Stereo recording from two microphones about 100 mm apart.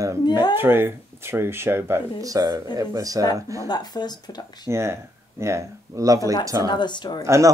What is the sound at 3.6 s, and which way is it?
Speech, 45° left (ahead or behind).